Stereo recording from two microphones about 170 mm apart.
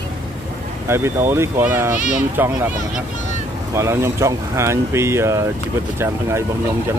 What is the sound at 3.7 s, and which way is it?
Speech, 15° right (ahead or behind).